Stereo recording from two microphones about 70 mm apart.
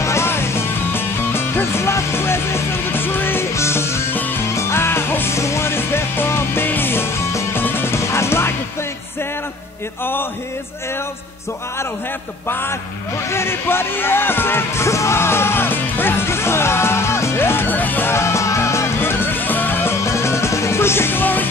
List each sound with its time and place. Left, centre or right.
0.0 s music: left
13.3 s speech: left
18.1 s music: left
20.0 s music: left